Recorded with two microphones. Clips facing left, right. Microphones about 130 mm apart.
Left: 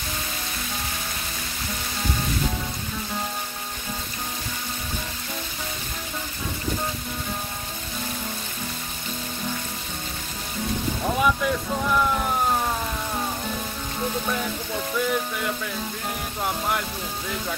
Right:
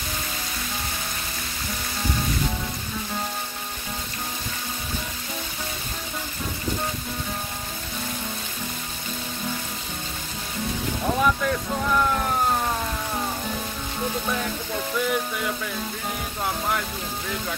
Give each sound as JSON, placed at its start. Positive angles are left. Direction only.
{"t": 11.1, "sound": "speech", "side_deg": 5}
{"t": 14.2, "sound": "music", "side_deg": 0}